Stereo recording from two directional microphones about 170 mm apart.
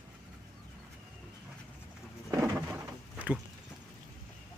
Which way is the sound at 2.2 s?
10° right (ahead or behind).